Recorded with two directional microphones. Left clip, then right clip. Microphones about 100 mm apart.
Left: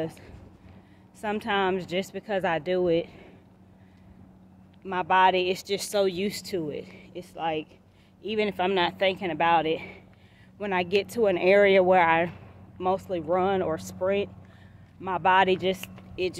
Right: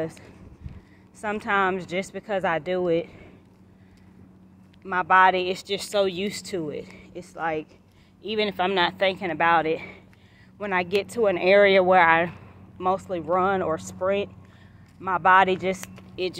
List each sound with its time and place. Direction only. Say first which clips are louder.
0.0 s speech: right 2 dB; 35° left (ahead or behind)
4.8 s speech: right 3 dB; 40° left (ahead or behind)
8.2 s speech: right 2 dB; 25° left (ahead or behind)
11.4 s speech: right 2 dB; 25° left (ahead or behind)
12.3 s speech: right 2 dB; 35° left (ahead or behind)
16.2 s speech: right 1 dB; 25° left (ahead or behind)